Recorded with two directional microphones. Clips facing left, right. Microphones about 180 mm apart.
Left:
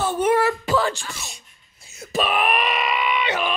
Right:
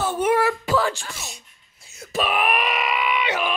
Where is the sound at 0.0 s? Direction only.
10° right (ahead or behind).